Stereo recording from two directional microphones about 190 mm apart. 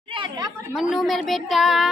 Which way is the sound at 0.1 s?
25° right (ahead or behind).